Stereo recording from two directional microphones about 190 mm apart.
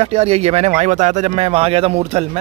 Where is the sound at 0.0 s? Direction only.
30° right (ahead or behind).